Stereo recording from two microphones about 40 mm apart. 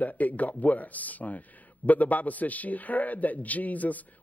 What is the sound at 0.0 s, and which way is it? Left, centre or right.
A man's voice, left.